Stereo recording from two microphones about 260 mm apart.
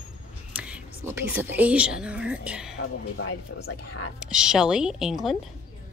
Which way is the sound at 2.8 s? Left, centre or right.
Left.